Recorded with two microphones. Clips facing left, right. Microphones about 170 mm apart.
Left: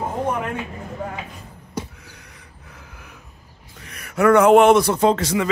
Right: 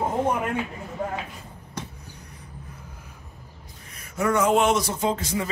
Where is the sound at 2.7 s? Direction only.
80° left.